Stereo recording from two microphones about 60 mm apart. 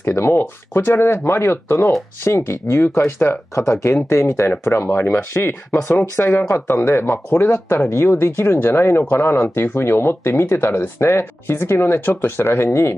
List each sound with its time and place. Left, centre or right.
0.0 s speech: left
4.8 s speech: left
5.1 s speech: left